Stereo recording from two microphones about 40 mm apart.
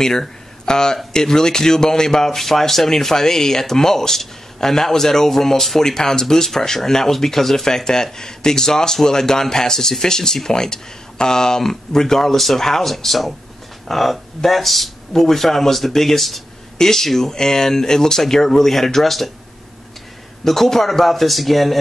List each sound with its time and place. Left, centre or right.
0.0 s speech: centre
20.4 s speech: centre